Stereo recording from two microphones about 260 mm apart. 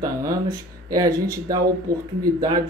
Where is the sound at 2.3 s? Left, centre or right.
Centre.